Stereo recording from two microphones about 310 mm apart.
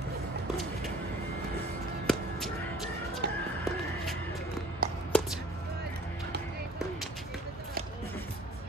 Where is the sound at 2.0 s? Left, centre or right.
Centre.